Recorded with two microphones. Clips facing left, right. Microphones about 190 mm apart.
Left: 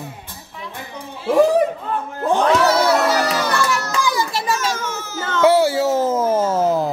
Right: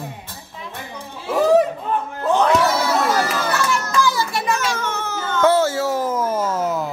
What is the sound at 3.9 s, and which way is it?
Children playing, 15° left (ahead or behind).